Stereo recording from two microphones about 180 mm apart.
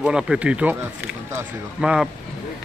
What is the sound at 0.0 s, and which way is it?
Speech, 5° right (ahead or behind).